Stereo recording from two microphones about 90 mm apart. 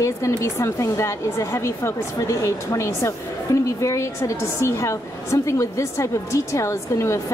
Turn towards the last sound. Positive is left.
turn(degrees=30)  # may be behind; listen again after turning